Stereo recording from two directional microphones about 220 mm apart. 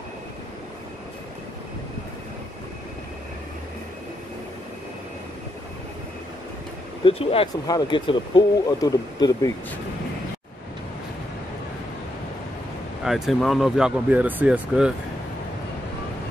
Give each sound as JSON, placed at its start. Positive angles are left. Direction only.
{"t": 7.1, "sound": "speech", "side_deg": 25}
{"t": 13.0, "sound": "speech", "side_deg": 0}